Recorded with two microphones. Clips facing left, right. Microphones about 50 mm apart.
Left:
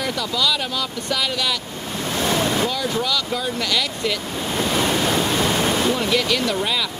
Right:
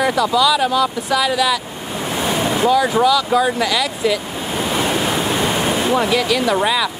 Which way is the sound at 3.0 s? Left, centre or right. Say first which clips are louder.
Right 9 dB; centre.